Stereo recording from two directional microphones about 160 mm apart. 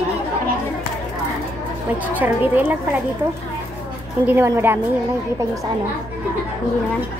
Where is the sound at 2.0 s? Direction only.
10° right (ahead or behind).